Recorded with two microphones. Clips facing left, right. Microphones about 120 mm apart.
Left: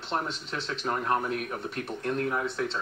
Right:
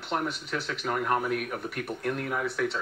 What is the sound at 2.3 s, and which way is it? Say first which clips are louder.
Speech: even; 25° left (ahead or behind).